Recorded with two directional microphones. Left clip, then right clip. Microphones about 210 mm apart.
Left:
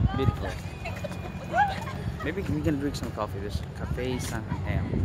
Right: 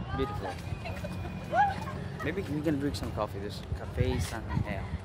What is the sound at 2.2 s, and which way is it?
Speech, 10° right (ahead or behind).